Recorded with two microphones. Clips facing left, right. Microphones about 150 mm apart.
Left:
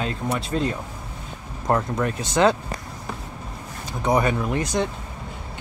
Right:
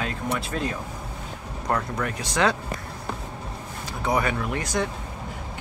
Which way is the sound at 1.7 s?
25° left (ahead or behind).